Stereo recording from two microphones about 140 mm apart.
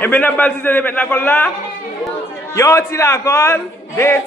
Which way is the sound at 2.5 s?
20° left (ahead or behind).